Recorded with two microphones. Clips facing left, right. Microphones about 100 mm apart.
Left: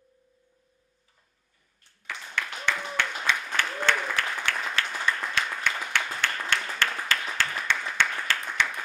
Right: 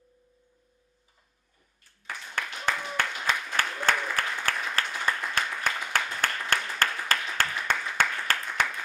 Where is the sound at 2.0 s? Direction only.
40° right (ahead or behind).